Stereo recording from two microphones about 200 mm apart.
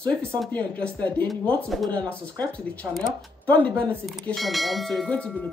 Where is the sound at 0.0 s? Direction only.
5° left (ahead or behind).